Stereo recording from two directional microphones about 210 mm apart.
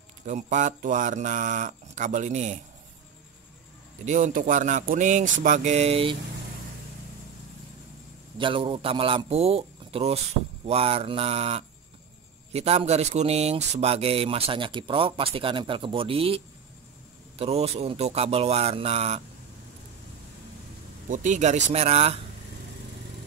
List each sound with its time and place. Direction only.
0.3 s speech: 35° right (ahead or behind)
4.0 s speech: 35° right (ahead or behind)
8.4 s speech: 25° right (ahead or behind)
21.1 s speech: 35° right (ahead or behind)